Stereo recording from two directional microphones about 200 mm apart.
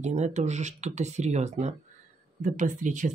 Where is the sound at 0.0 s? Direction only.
35° right (ahead or behind).